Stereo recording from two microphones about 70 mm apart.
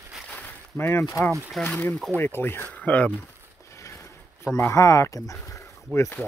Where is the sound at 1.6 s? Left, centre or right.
Left.